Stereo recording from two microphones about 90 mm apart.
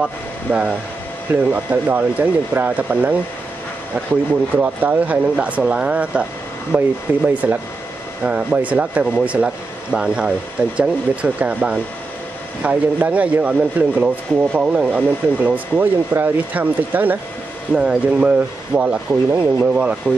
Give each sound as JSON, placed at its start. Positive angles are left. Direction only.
{"t": 0.5, "sound": "speech", "side_deg": -15}
{"t": 4.6, "sound": "speech", "side_deg": -20}